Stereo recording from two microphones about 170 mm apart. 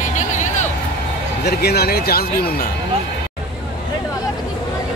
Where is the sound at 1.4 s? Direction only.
70° left (ahead or behind).